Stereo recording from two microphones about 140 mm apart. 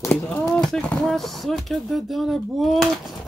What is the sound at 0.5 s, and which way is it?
Speech, 5° left (ahead or behind).